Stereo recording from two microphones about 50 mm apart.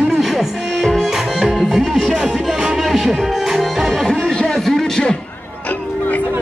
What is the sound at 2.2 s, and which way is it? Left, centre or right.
Music, centre.